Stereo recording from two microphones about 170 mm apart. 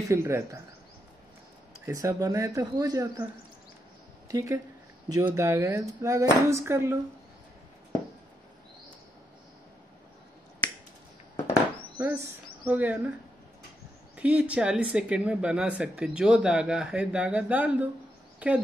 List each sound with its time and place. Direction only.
0.0 s speech: 15° right (ahead or behind)
1.9 s speech: 20° right (ahead or behind)
4.3 s a woman's voice: 20° right (ahead or behind)
12.0 s speech: 10° right (ahead or behind)
14.1 s speech: 10° right (ahead or behind)